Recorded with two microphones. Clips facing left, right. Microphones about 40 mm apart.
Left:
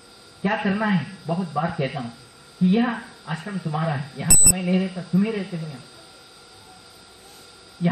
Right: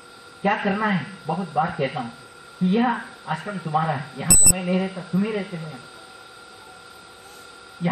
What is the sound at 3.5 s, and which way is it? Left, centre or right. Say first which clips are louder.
Speech: right 3 dB; centre.